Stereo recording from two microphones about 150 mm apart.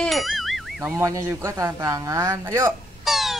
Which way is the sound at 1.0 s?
20° right (ahead or behind).